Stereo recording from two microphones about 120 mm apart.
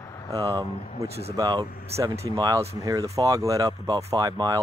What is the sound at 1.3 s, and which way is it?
Speech, 30° right (ahead or behind).